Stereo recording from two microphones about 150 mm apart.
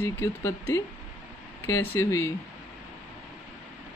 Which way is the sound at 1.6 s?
15° left (ahead or behind).